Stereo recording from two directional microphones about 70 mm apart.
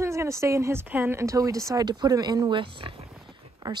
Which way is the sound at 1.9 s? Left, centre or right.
Right.